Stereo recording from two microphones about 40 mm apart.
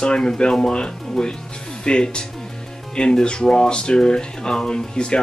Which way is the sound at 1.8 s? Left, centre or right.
Left.